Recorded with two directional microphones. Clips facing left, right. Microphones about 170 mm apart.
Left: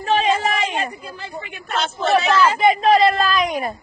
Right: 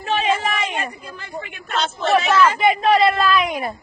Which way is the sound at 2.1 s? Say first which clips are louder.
Even; 35° left (ahead or behind).